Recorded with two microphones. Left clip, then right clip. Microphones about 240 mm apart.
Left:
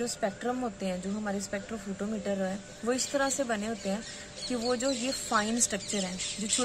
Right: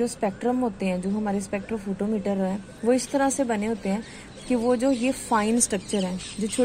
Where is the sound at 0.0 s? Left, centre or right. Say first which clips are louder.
Right 6 dB; centre.